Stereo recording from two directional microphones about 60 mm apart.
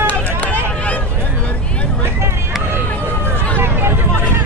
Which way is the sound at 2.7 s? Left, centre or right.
Right.